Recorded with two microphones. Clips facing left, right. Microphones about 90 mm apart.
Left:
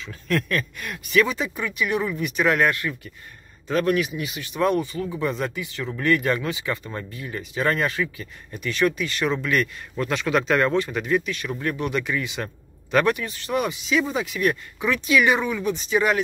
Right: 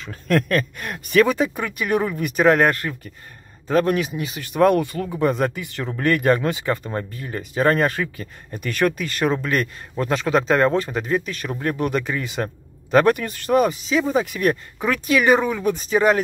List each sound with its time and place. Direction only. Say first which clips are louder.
0.0 s speech: right 5 dB; 45° right (ahead or behind)